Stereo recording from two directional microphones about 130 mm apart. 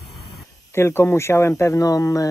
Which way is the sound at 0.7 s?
20° left (ahead or behind).